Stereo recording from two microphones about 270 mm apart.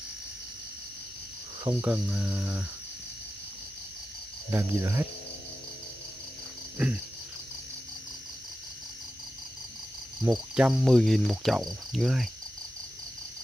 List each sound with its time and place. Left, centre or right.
1.6 s cricket: centre
1.9 s cricket: centre
4.5 s speech: centre
10.2 s cricket: centre